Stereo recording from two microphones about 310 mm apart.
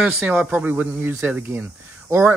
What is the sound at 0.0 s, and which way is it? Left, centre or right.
Speech, centre.